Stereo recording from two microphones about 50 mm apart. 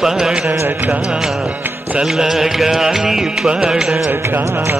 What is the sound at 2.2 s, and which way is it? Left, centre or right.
Music, centre.